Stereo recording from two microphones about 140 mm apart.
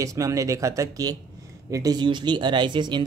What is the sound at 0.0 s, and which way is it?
Speech, 25° right (ahead or behind).